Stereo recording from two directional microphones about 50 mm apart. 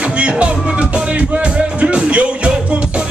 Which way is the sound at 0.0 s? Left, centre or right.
Right.